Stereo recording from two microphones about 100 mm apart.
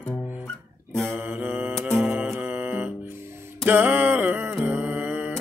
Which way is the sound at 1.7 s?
5° left (ahead or behind).